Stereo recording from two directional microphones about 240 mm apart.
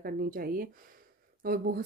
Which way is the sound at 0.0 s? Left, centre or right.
Right.